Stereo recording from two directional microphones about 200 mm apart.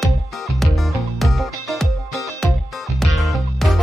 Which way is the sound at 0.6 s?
Centre (ahead or behind).